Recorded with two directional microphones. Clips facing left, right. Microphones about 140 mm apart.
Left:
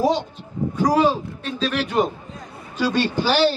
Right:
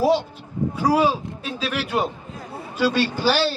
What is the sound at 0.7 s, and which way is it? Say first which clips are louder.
A man's voice: left 1 dB; 10° right (ahead or behind).